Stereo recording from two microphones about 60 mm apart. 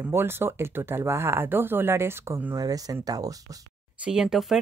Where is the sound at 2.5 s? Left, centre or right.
Right.